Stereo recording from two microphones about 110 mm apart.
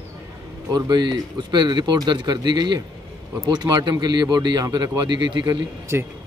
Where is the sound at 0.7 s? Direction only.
40° right (ahead or behind).